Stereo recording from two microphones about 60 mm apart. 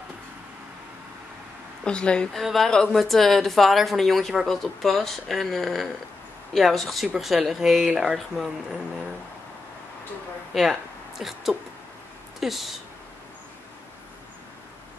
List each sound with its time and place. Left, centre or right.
1.9 s a woman's voice: centre
2.4 s speech: centre
10.5 s a sound: centre
12.4 s speech: centre